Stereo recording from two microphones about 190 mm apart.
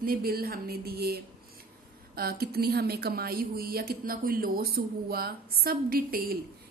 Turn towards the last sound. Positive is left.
turn(degrees=-50)  # may be behind; listen again after turning